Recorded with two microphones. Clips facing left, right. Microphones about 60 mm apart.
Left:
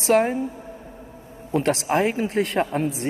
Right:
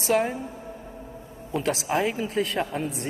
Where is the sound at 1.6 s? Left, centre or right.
Left.